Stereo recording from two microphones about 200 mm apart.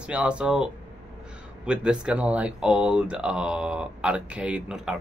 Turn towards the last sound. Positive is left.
turn(degrees=-5)  # may be behind; listen again after turning